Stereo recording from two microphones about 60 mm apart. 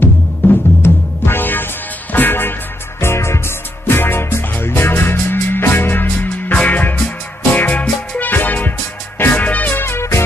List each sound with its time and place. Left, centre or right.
0.0 s music: left
3.0 s music: left